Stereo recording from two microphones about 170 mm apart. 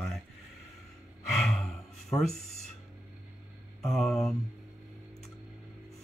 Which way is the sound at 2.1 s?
40° left (ahead or behind).